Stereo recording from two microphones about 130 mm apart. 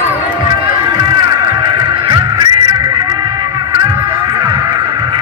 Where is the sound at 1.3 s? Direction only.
30° right (ahead or behind).